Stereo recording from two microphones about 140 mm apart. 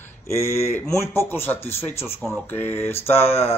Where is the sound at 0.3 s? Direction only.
20° left (ahead or behind).